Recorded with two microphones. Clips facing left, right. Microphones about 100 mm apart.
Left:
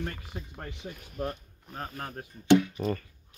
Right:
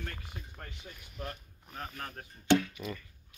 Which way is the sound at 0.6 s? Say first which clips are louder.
Left 7 dB; 40° left (ahead or behind).